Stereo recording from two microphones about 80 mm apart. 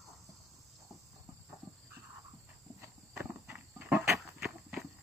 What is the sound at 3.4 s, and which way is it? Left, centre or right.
Horse, right.